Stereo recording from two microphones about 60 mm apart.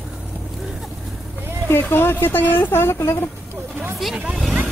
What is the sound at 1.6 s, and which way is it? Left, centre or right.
A woman's voice, left.